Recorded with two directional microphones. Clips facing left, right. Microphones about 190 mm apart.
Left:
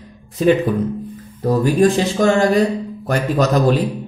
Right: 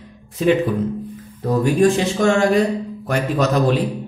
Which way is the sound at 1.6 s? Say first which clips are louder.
Even; 35° left (ahead or behind).